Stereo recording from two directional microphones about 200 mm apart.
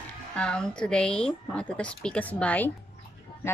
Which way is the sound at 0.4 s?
5° left (ahead or behind).